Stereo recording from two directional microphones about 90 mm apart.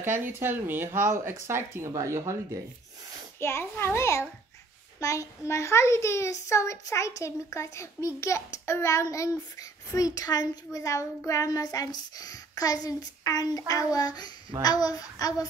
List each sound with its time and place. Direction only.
0.0 s speech: 25° right (ahead or behind)
3.3 s a child's voice: 30° left (ahead or behind)
5.0 s child singing: 35° left (ahead or behind)